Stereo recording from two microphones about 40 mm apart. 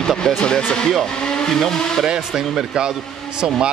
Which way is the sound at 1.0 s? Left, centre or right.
Left.